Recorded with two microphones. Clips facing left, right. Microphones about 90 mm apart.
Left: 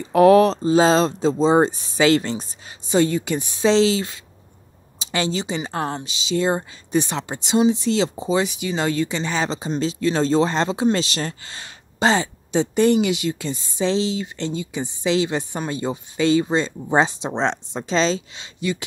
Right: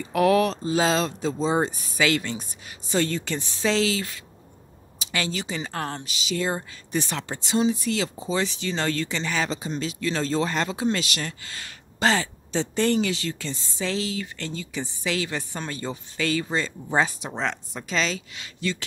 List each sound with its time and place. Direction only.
0.1 s speech: 30° left (ahead or behind)
2.9 s speech: 15° left (ahead or behind)